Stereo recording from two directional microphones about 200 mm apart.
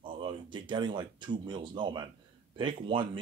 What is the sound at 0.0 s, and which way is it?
Speech, 25° right (ahead or behind).